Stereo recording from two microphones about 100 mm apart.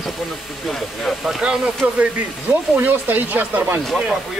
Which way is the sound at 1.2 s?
10° right (ahead or behind).